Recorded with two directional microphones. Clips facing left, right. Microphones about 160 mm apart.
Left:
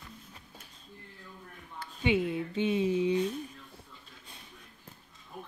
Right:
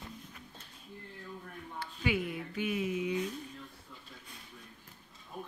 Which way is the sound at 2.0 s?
25° left (ahead or behind).